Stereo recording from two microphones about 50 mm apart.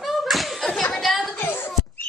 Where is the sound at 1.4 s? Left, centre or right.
Left.